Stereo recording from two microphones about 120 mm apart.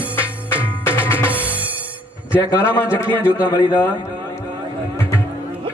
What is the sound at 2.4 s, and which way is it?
Speech, 25° left (ahead or behind).